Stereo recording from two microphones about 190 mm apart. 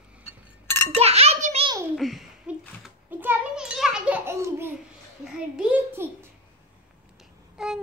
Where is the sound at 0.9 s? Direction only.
30° right (ahead or behind).